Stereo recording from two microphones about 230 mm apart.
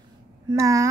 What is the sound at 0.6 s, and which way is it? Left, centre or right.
Speech, centre.